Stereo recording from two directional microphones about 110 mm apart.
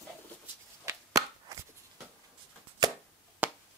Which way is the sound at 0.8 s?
30° right (ahead or behind).